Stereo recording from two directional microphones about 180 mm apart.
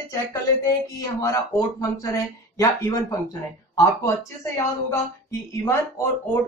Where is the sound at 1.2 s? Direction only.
20° left (ahead or behind).